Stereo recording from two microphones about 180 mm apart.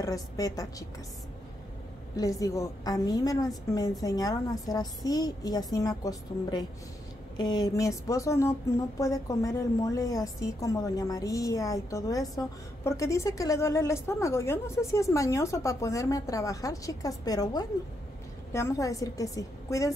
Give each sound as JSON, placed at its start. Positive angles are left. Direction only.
{"t": 0.0, "sound": "a woman's voice", "side_deg": 20}
{"t": 2.1, "sound": "a woman's voice", "side_deg": 20}